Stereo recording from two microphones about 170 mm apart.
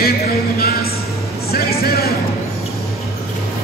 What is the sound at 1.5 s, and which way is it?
Music, 65° left (ahead or behind).